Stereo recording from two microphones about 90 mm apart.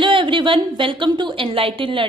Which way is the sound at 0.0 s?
70° right (ahead or behind).